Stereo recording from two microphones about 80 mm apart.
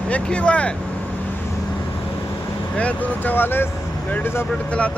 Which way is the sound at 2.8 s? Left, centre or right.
Centre.